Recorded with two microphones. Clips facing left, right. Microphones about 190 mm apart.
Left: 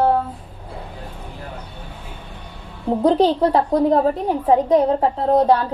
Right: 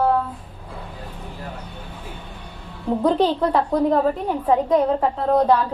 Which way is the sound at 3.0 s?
35° left (ahead or behind).